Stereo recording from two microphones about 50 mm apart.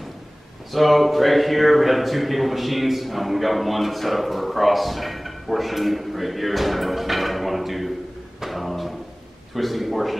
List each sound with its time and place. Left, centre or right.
0.7 s a man's voice: centre
8.4 s a sound: centre
9.6 s a man's voice: centre